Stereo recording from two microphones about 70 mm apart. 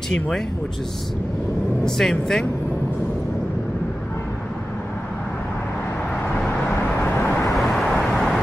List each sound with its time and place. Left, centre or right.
1.9 s speech: centre
6.7 s vehicle: left
7.5 s vehicle: centre